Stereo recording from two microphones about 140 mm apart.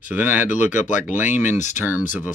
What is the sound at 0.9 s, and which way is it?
Speech, 65° left (ahead or behind).